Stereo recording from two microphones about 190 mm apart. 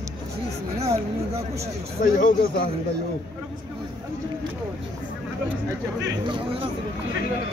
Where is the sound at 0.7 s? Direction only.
35° right (ahead or behind).